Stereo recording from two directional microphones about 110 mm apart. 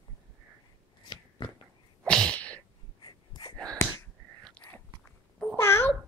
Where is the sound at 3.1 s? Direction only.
45° left (ahead or behind).